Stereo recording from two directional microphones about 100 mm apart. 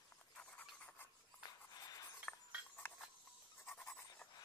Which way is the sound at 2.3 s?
20° left (ahead or behind).